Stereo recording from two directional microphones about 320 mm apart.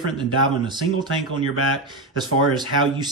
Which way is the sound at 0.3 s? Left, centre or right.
Centre.